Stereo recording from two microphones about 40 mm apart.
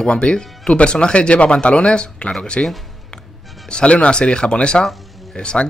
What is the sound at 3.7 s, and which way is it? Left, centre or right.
Speech, left.